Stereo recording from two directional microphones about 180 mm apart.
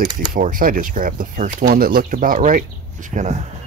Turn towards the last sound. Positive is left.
turn(degrees=-45)  # may be behind; listen again after turning